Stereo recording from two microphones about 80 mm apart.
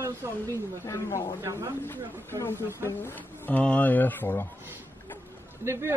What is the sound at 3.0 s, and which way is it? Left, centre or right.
Speech, centre.